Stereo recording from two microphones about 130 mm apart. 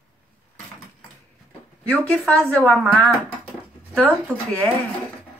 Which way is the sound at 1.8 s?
10° left (ahead or behind).